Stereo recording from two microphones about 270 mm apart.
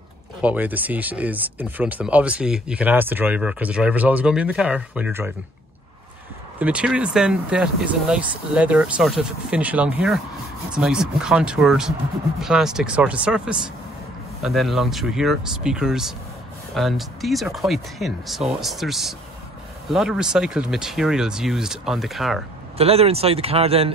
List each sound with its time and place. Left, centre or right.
0.4 s speech: centre
6.6 s speech: centre
22.8 s speech: right